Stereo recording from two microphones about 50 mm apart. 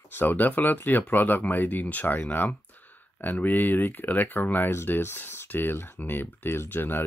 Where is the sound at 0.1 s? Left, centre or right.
Left.